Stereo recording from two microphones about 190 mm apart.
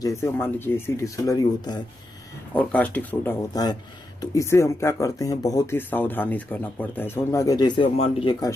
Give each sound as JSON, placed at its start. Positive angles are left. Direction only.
{"t": 0.0, "sound": "speech", "side_deg": 15}
{"t": 2.5, "sound": "speech", "side_deg": 5}